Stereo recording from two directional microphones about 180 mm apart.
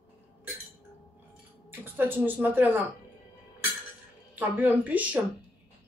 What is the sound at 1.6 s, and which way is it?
A woman's voice, 10° right (ahead or behind).